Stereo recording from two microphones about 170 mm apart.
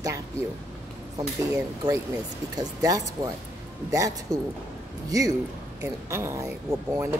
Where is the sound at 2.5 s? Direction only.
20° right (ahead or behind).